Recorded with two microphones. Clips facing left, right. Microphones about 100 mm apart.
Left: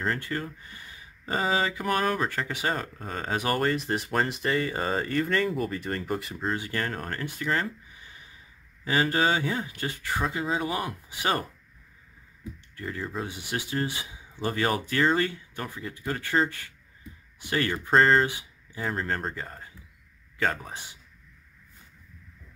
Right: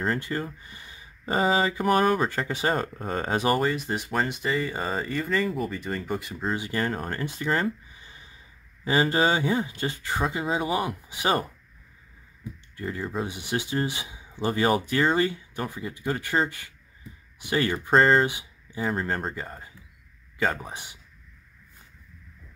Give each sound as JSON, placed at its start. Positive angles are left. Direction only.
{"t": 0.3, "sound": "speech", "side_deg": -15}
{"t": 3.5, "sound": "speech", "side_deg": 0}
{"t": 6.5, "sound": "speech", "side_deg": -15}
{"t": 8.8, "sound": "speech", "side_deg": -25}
{"t": 12.7, "sound": "speech", "side_deg": -20}
{"t": 18.2, "sound": "a sound", "side_deg": -20}
{"t": 18.8, "sound": "speech", "side_deg": -5}
{"t": 20.6, "sound": "speech", "side_deg": -20}